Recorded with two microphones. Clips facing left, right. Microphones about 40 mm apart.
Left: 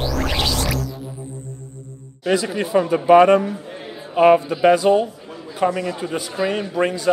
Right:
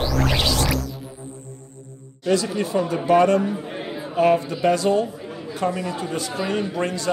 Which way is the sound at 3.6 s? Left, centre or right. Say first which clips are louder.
Right 3 dB; centre.